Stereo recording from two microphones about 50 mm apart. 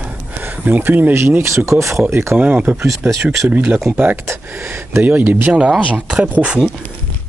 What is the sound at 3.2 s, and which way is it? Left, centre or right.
Speech, right.